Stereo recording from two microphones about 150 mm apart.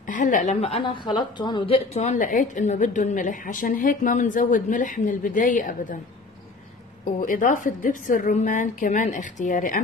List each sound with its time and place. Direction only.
0.0 s a woman's voice: 60° left (ahead or behind)
0.6 s speech: 40° left (ahead or behind); by 5.9 s 60° left (ahead or behind)
7.2 s speech: 60° left (ahead or behind)